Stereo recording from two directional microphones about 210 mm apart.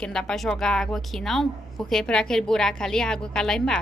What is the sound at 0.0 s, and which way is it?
A woman's voice, 5° left (ahead or behind).